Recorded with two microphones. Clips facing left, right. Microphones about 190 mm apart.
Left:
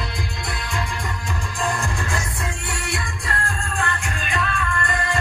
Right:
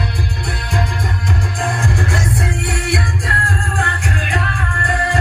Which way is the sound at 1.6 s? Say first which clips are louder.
Right 4 dB; 60° right (ahead or behind).